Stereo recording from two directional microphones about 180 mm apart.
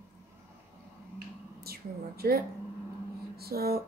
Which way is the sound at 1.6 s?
60° right (ahead or behind).